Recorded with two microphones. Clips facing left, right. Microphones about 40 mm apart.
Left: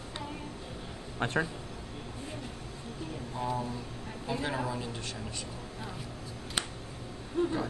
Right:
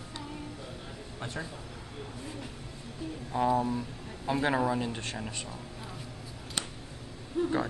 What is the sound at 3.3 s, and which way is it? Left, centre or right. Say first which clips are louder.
Speech: right 8 dB; right.